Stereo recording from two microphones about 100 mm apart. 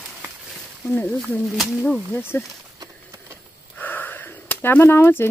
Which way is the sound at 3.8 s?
20° left (ahead or behind).